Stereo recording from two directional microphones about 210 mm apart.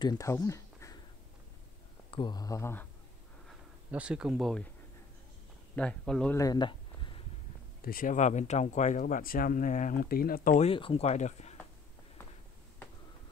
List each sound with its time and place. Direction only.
0.0 s speech: 15° left (ahead or behind)
2.0 s speech: 20° left (ahead or behind)
3.4 s speech: 5° right (ahead or behind)
5.8 s speech: 5° left (ahead or behind)
6.4 s speech: 20° left (ahead or behind)
7.8 s speech: 40° left (ahead or behind)